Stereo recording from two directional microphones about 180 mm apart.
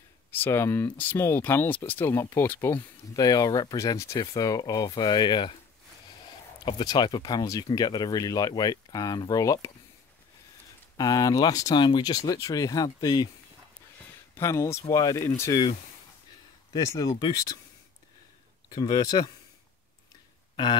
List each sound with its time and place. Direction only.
0.3 s speech: 15° left (ahead or behind)
6.6 s speech: 25° left (ahead or behind)
11.0 s speech: 20° left (ahead or behind)
14.3 s speech: 15° left (ahead or behind)
16.7 s speech: 20° left (ahead or behind)
18.7 s speech: 20° left (ahead or behind)